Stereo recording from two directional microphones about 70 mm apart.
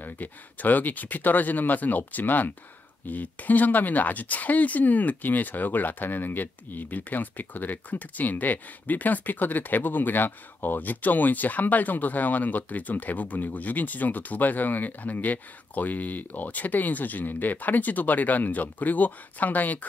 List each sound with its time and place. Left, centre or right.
0.0 s speech: left